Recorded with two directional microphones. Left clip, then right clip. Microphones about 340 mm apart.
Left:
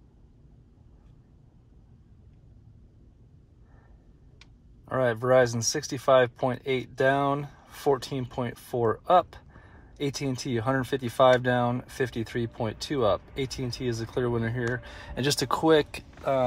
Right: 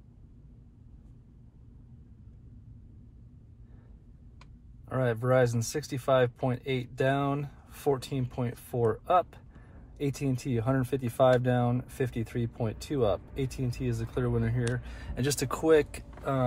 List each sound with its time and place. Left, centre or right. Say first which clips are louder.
4.8 s speech: left 4 dB; centre